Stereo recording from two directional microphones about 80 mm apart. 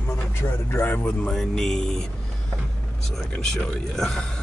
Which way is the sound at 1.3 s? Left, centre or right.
Centre.